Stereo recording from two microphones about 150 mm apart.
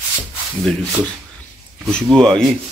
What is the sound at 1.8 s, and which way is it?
Speech, 5° left (ahead or behind).